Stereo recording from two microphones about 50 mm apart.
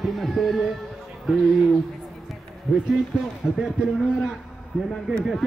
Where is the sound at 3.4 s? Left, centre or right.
Left.